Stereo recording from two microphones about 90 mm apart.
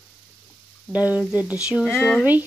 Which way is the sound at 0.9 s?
15° right (ahead or behind).